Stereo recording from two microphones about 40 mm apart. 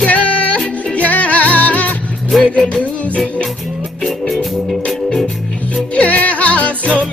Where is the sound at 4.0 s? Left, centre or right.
Centre.